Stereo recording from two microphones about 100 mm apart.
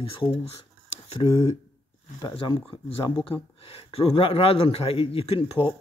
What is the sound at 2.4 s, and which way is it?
Speech, 55° left (ahead or behind).